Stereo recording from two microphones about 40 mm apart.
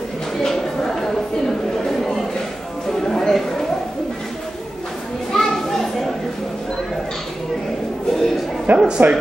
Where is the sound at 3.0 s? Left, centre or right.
Centre.